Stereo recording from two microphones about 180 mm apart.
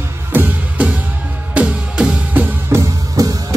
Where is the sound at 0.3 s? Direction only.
10° right (ahead or behind).